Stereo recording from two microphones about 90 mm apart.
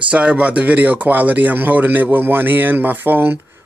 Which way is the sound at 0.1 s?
15° right (ahead or behind).